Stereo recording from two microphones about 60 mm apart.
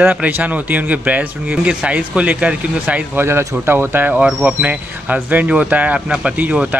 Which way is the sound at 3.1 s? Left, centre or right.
Right.